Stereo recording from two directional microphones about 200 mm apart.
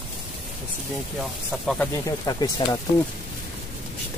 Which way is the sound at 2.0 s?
20° left (ahead or behind).